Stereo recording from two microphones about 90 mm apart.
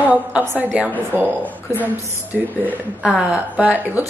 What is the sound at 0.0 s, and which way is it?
A woman's voice, 20° right (ahead or behind).